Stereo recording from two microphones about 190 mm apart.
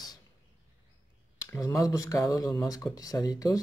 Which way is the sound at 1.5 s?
15° left (ahead or behind).